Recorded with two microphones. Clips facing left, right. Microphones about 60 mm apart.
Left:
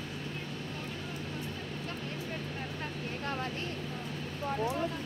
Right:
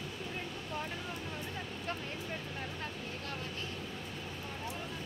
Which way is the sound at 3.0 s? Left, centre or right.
Left.